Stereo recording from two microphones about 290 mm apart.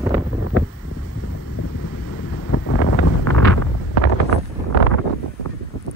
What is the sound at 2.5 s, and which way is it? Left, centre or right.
Wind noise, left.